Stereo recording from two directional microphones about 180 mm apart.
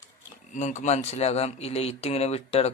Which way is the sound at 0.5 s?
40° left (ahead or behind).